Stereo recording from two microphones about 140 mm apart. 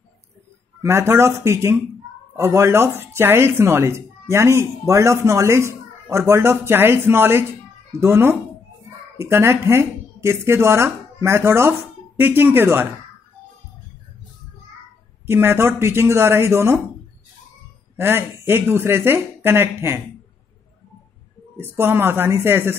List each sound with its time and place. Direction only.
0.8 s speech: 20° right (ahead or behind)
15.2 s speech: 15° right (ahead or behind)
17.9 s speech: 15° right (ahead or behind)
21.5 s speech: 15° right (ahead or behind)